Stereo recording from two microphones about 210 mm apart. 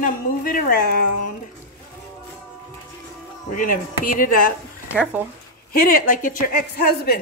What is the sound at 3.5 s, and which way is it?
Speech, 40° left (ahead or behind).